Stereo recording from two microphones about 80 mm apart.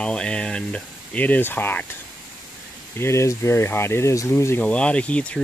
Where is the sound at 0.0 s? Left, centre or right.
Centre.